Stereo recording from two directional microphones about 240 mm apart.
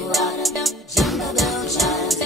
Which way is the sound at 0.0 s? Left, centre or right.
Centre.